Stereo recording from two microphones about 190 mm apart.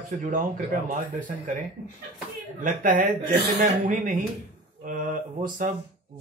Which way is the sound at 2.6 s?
45° right (ahead or behind).